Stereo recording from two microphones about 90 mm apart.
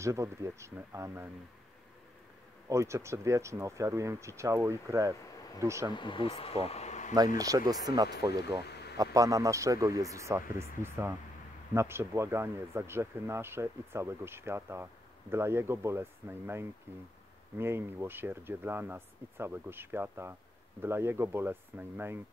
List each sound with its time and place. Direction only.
0.0 s speech: 35° right (ahead or behind)
2.7 s speech: 30° right (ahead or behind)
5.9 s speech: 65° left (ahead or behind); by 6.7 s 90° left
7.2 s speech: 40° right (ahead or behind); by 22.2 s 25° right (ahead or behind)